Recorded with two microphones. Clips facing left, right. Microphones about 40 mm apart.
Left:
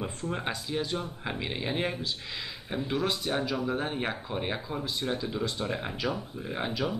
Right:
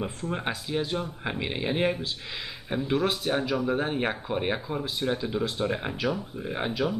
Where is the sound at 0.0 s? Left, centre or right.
Centre.